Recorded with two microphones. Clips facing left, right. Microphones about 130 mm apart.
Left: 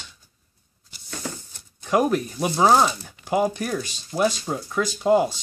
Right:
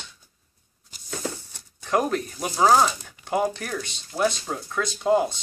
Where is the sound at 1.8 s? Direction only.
15° left (ahead or behind).